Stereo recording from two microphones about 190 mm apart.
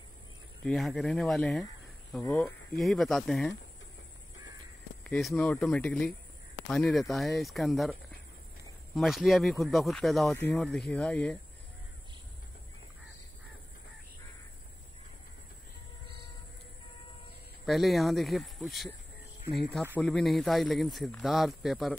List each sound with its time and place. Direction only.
0.7 s a man's voice: centre (ahead or behind)
2.2 s speech: 15° left (ahead or behind)
2.7 s a man's voice: centre (ahead or behind)
5.0 s a man's voice: 5° left (ahead or behind)
17.6 s a man's voice: centre (ahead or behind)
20.0 s a man's voice: 5° left (ahead or behind)